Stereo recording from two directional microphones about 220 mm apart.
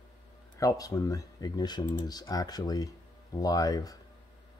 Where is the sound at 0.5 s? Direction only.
15° left (ahead or behind).